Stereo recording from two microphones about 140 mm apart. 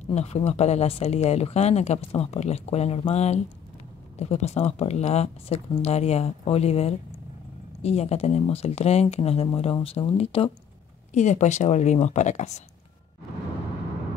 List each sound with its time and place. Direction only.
0.1 s speech: 50° left (ahead or behind)
11.1 s a woman's voice: 60° left (ahead or behind)